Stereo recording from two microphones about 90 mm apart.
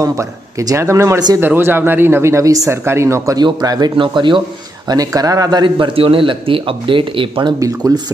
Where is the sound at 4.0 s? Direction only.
65° right (ahead or behind).